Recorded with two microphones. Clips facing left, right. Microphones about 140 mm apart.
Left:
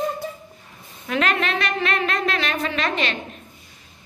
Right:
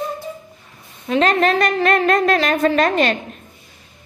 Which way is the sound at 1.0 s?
30° right (ahead or behind).